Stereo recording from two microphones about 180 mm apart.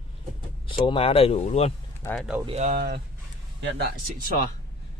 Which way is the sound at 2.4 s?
35° right (ahead or behind).